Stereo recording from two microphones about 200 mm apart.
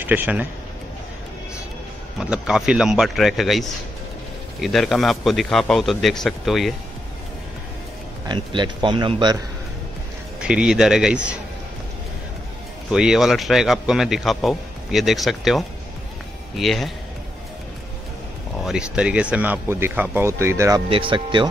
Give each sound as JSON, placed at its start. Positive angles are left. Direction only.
{"t": 0.0, "sound": "speech", "side_deg": -10}
{"t": 2.1, "sound": "a man's voice", "side_deg": -5}
{"t": 8.3, "sound": "a man's voice", "side_deg": -25}
{"t": 10.4, "sound": "a man's voice", "side_deg": -5}
{"t": 12.9, "sound": "a man's voice", "side_deg": -5}
{"t": 18.6, "sound": "speech", "side_deg": -5}
{"t": 20.9, "sound": "a man's voice", "side_deg": -25}